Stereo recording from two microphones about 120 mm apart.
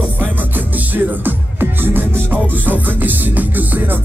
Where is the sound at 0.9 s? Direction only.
15° right (ahead or behind).